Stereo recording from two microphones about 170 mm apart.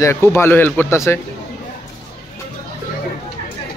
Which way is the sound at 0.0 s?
15° left (ahead or behind).